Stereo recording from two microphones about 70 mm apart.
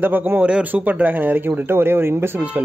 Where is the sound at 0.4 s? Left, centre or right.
Centre.